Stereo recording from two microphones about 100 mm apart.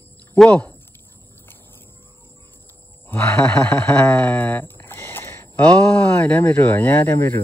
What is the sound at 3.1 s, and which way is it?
Speech, 10° left (ahead or behind).